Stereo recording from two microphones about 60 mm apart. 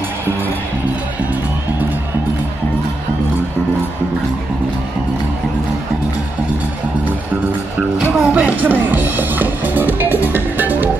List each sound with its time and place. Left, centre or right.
8.1 s speech: right